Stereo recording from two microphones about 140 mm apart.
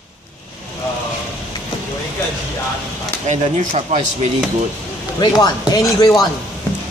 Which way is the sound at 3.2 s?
55° right (ahead or behind).